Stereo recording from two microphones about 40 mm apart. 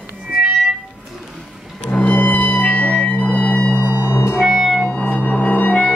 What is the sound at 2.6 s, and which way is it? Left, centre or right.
Music, left.